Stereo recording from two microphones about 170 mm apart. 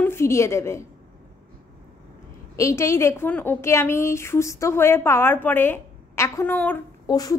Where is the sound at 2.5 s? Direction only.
15° left (ahead or behind).